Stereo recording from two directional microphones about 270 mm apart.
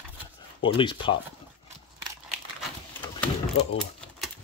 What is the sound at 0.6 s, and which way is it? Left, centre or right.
Speech, centre.